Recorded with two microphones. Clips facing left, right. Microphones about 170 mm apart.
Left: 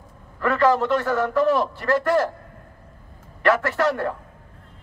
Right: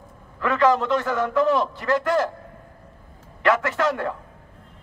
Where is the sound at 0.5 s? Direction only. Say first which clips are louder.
Left 1 dB; 5° left (ahead or behind).